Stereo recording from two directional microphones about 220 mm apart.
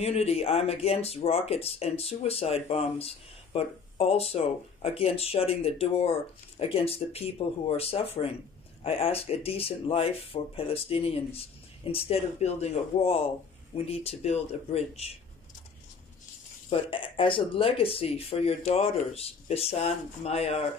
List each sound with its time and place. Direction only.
0.0 s speech: 30° left (ahead or behind)
16.7 s speech: 25° left (ahead or behind)